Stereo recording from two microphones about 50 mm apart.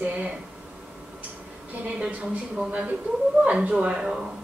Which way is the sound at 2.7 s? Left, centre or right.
Right.